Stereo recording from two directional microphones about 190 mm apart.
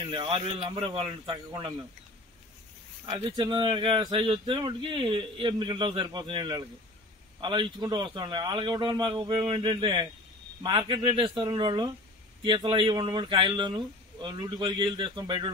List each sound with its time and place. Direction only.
0.0 s speech: 25° right (ahead or behind)
3.1 s speech: 20° right (ahead or behind)